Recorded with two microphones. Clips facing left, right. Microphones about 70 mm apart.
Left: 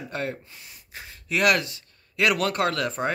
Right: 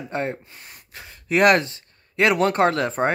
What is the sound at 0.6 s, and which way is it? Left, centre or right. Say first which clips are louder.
Gasp: right 3 dB; right.